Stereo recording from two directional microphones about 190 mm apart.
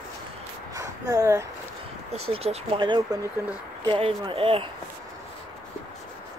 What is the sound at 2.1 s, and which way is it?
Speech, 35° right (ahead or behind).